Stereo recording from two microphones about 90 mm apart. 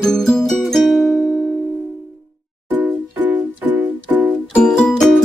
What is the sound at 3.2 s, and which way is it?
Music, 20° right (ahead or behind).